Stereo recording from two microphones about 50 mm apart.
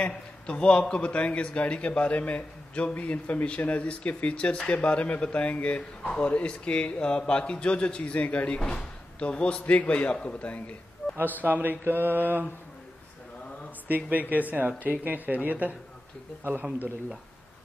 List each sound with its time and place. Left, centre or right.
0.0 s speech: left
11.0 s a sound: left
11.4 s speech: right
13.8 s speech: right